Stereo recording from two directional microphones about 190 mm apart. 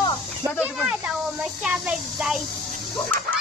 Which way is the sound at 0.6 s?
5° right (ahead or behind).